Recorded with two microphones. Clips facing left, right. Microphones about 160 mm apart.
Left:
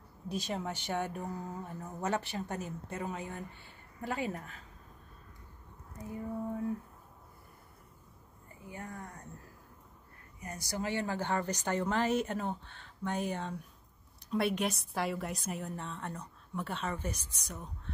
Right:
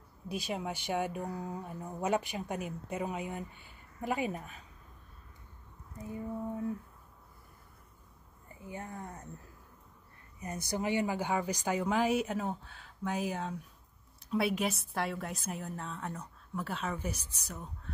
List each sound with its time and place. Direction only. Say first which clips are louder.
0.3 s speech: even; 10° right (ahead or behind)
8.6 s speech: right 2 dB; 25° right (ahead or behind)
10.4 s a woman's voice: right 3 dB; 20° right (ahead or behind); by 17.9 s 5° right (ahead or behind)